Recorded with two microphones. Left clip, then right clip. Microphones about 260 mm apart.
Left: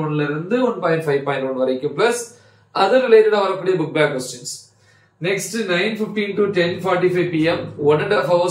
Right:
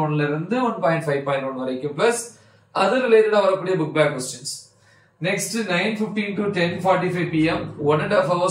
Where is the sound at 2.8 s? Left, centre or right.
Centre.